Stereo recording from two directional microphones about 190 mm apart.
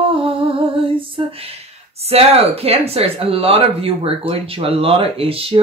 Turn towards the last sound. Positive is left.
turn(degrees=-30)  # may be behind; listen again after turning